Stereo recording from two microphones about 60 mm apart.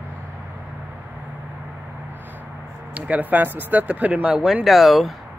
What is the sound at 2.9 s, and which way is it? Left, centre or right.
Speech, right.